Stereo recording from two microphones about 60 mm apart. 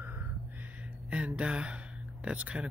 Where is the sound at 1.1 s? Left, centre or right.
Right.